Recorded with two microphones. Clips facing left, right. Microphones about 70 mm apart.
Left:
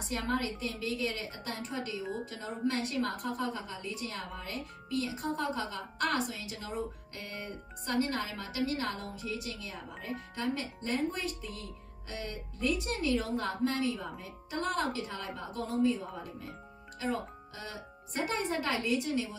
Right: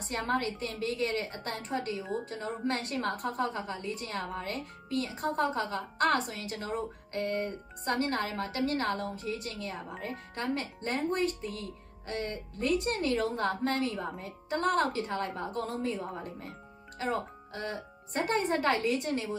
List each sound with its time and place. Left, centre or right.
0.1 s a woman's voice: right